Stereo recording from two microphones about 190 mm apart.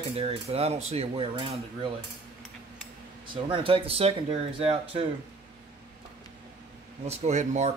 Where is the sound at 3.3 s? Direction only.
25° right (ahead or behind).